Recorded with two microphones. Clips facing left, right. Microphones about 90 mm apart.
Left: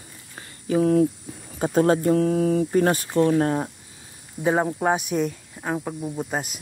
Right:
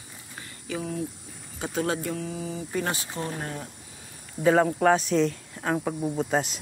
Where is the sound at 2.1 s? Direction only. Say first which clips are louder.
Left 13 dB; 55° left (ahead or behind).